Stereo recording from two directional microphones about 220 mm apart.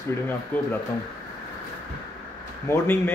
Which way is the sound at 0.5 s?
10° left (ahead or behind).